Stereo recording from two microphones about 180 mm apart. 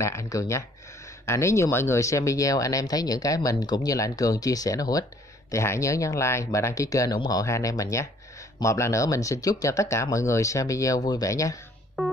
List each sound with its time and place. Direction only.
0.0 s speech: 15° left (ahead or behind)
12.0 s music: centre (ahead or behind)